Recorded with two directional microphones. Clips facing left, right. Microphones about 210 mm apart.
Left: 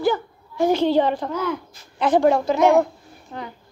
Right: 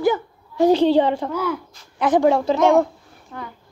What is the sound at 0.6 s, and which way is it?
Speech, 30° right (ahead or behind).